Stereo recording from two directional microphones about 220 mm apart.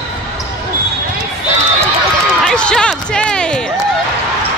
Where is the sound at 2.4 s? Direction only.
5° left (ahead or behind).